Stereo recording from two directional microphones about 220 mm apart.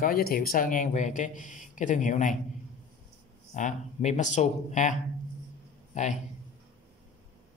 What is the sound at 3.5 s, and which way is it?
A man's voice, 35° left (ahead or behind).